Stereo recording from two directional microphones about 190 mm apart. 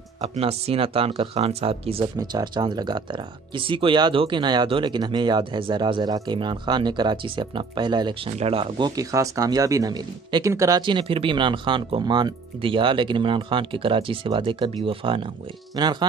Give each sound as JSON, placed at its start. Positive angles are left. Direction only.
{"t": 0.2, "sound": "speech", "side_deg": -30}
{"t": 2.1, "sound": "speech", "side_deg": -20}